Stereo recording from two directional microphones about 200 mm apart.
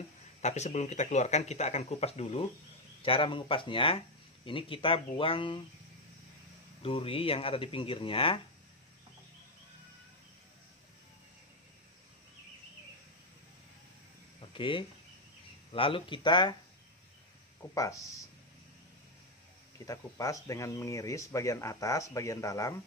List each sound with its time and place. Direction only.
0.4 s speech: 35° left (ahead or behind)
6.8 s speech: 30° left (ahead or behind)
14.4 s a sound: 25° left (ahead or behind)
15.7 s speech: 25° left (ahead or behind)
17.7 s speech: 15° left (ahead or behind)
19.9 s speech: 15° left (ahead or behind)